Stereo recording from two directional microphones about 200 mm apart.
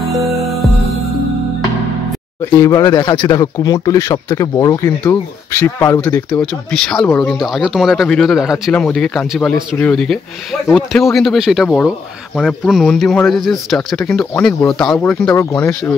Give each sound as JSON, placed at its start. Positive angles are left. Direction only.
{"t": 2.5, "sound": "speech", "side_deg": 15}